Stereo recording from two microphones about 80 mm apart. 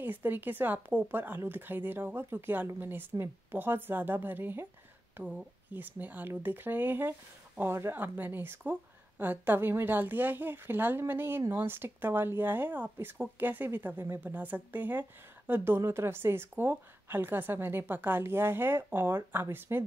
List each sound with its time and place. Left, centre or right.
0.0 s a woman's voice: right